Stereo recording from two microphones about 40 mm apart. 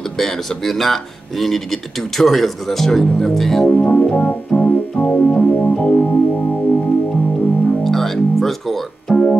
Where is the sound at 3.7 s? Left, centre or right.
Left.